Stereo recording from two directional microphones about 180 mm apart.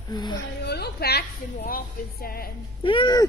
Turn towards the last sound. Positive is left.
turn(degrees=25)  # may be behind; listen again after turning